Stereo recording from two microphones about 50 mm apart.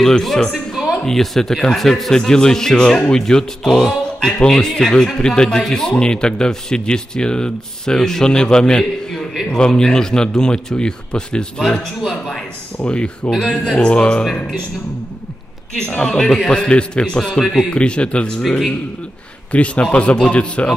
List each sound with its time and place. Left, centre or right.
0.0 s speech: centre
0.5 s music: centre
1.0 s a man's voice: centre
16.0 s a man's voice: centre
19.5 s a man's voice: left